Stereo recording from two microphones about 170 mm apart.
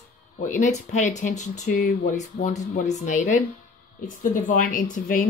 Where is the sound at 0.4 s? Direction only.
45° left (ahead or behind).